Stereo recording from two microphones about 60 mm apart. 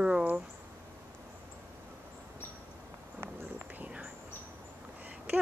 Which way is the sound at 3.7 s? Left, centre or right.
Right.